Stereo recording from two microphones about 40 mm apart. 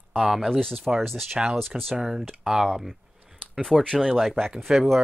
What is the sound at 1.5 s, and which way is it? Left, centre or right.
Speech, centre.